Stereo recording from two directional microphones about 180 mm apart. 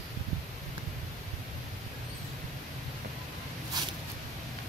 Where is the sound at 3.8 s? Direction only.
25° right (ahead or behind).